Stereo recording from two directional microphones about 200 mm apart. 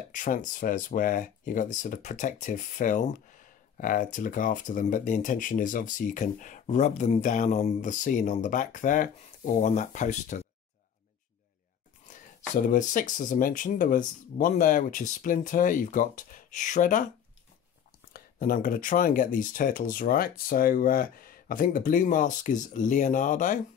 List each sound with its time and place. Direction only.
0.1 s speech: 40° left (ahead or behind)
12.1 s speech: 40° left (ahead or behind)
18.1 s speech: 45° left (ahead or behind)